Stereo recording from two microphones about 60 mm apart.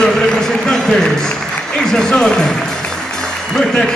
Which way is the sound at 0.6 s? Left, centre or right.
Centre.